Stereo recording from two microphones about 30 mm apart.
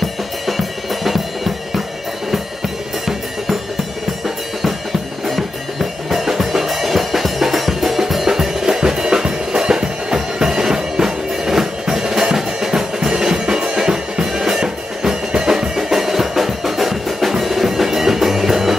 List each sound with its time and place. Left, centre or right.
0.5 s drum: centre
6.0 s music: centre
12.5 s drum kit: centre
13.7 s music: right
16.0 s music: centre